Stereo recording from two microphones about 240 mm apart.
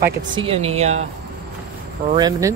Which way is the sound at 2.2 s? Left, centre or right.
Centre.